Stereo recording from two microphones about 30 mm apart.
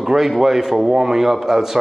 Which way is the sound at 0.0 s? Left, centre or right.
Centre.